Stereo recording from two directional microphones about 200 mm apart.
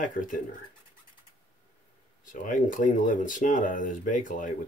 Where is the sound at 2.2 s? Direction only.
40° left (ahead or behind).